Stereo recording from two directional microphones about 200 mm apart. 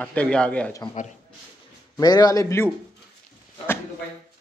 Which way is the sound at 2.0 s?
20° left (ahead or behind).